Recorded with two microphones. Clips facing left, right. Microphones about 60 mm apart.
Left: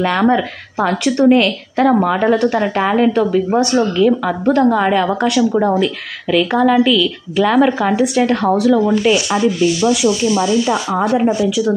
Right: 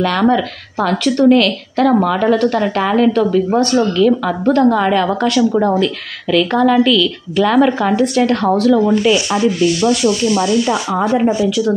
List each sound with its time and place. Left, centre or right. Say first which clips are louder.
0.0 s a woman's voice: even; left
9.4 s speech: even; right
10.7 s a woman's voice: even; centre